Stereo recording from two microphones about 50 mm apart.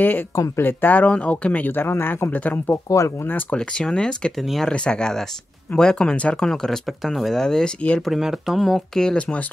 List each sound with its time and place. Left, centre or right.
0.0 s speech: left
1.7 s speech: left
2.7 s speech: left
3.5 s speech: centre
4.4 s speech: centre
4.7 s speech: centre
6.4 s speech: centre
7.4 s speech: centre
8.2 s speech: centre
8.5 s speech: centre